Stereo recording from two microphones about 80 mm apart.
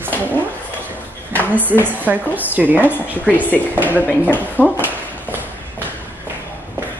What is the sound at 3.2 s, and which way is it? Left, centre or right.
Speech, centre.